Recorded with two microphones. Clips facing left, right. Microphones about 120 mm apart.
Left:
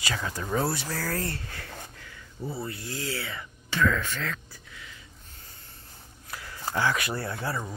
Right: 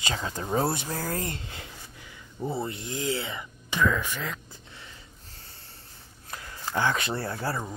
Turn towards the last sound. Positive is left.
turn(degrees=-30)  # may be behind; listen again after turning